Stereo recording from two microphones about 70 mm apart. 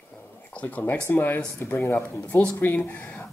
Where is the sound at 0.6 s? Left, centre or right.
Left.